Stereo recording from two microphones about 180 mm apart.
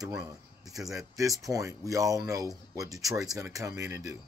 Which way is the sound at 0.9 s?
20° right (ahead or behind).